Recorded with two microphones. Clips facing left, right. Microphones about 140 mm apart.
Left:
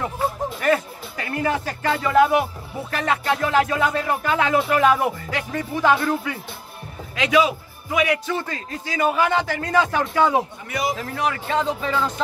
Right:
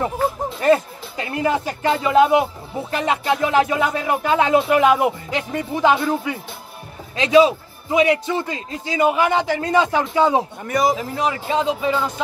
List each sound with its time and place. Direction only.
0.6 s speech: 25° right (ahead or behind)
2.9 s music: 20° right (ahead or behind)
7.2 s music: 30° right (ahead or behind)
10.7 s speech: 40° right (ahead or behind)
11.0 s music: 20° right (ahead or behind)
11.3 s speech: 15° right (ahead or behind)